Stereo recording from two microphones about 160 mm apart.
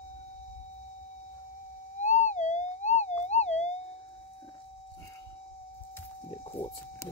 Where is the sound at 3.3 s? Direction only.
45° left (ahead or behind).